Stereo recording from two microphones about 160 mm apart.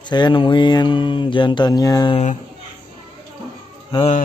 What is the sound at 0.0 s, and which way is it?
Speech, 30° left (ahead or behind).